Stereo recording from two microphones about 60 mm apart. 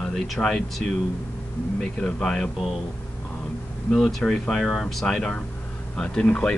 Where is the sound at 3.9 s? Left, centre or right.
Centre.